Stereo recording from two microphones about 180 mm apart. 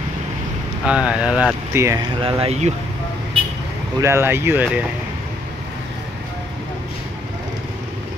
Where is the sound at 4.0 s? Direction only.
15° right (ahead or behind).